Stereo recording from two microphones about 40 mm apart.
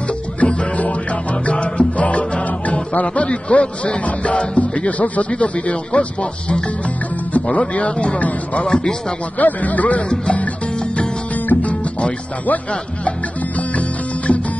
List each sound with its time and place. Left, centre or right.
0.4 s music: left
5.3 s a man's voice: left
7.4 s a man's voice: left
9.4 s speech: left
11.6 s music: left
13.6 s music: left